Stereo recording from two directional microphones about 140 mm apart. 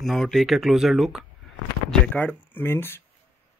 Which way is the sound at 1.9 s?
10° left (ahead or behind).